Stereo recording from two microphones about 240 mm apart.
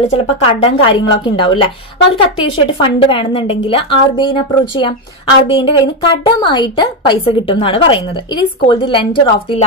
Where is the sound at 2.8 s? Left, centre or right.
Left.